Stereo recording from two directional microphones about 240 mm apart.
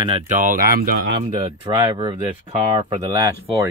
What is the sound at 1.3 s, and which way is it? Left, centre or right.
Speech, centre.